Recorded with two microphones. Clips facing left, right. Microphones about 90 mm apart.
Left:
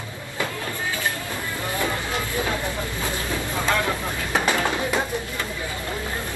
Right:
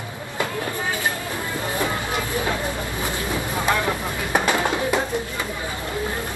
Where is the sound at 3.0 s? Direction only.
20° right (ahead or behind).